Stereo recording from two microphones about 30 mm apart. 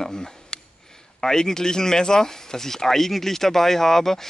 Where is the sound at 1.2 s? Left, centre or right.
Centre.